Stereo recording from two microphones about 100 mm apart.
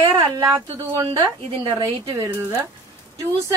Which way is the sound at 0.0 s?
65° right (ahead or behind).